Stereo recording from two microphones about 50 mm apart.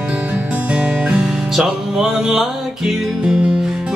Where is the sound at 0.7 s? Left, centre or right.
Right.